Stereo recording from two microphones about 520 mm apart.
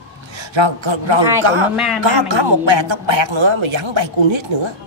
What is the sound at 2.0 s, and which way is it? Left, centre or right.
A man's voice, right.